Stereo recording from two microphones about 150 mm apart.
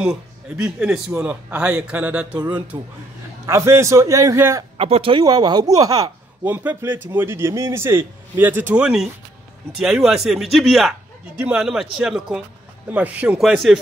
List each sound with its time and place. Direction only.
0.0 s a man's voice: 5° right (ahead or behind)
2.7 s a man's voice: 25° right (ahead or behind)
4.7 s speech: 40° right (ahead or behind)
5.2 s a man's voice: 25° right (ahead or behind)
6.4 s a man's voice: 10° right (ahead or behind)